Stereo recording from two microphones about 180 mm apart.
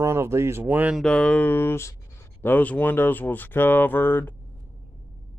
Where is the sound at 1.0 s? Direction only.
5° left (ahead or behind).